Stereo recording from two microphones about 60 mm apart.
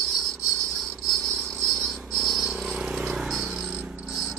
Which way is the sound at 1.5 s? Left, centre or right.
Centre.